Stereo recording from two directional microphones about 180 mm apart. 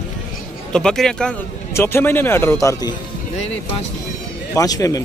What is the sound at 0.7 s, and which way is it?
A man's voice, 5° left (ahead or behind).